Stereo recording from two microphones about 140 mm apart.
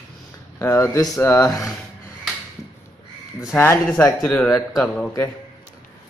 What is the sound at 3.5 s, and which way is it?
Speech, 15° left (ahead or behind).